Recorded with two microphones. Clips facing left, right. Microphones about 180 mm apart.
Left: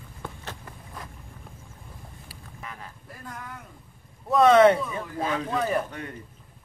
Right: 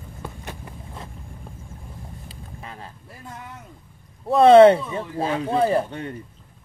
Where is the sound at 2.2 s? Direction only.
25° right (ahead or behind).